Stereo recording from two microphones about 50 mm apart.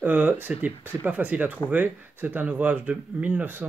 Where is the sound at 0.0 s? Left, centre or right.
Right.